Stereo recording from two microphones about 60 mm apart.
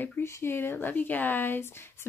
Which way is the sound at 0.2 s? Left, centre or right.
Left.